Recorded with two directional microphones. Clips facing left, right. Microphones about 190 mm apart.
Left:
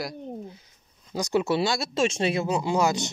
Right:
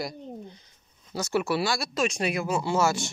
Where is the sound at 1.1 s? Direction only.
15° left (ahead or behind).